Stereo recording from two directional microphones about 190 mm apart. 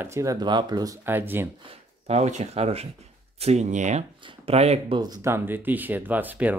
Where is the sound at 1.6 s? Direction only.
30° right (ahead or behind).